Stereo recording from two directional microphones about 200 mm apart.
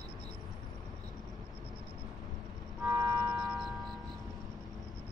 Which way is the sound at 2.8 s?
15° right (ahead or behind).